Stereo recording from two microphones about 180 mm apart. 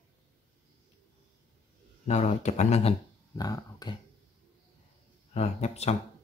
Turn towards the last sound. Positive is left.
turn(degrees=40)  # may be behind; listen again after turning